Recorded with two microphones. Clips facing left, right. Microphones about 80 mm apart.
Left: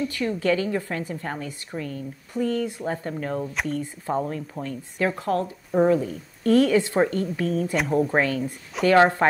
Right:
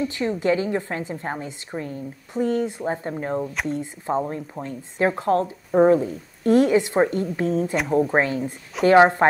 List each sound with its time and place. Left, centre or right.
0.0 s a woman's voice: right
7.7 s speech: centre
8.1 s a woman's voice: right